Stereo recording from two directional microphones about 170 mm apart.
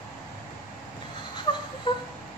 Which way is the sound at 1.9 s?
30° left (ahead or behind).